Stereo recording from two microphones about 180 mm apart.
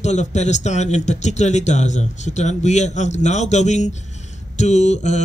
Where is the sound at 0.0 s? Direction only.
40° left (ahead or behind).